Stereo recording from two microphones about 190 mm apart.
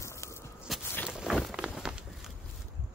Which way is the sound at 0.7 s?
Centre (ahead or behind).